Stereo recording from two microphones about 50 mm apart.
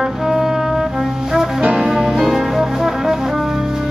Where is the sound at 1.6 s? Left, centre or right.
Right.